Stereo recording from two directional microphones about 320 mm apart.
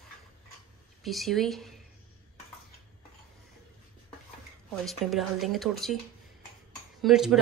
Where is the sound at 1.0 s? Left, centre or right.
Centre.